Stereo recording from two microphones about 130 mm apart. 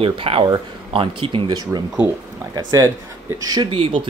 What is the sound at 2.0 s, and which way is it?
Speech, 30° left (ahead or behind).